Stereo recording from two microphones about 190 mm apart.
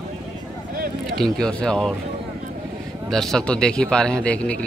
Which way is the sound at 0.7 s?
50° right (ahead or behind).